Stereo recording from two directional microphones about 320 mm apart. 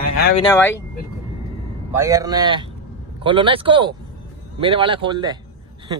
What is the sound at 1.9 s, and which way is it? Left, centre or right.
Speech, centre.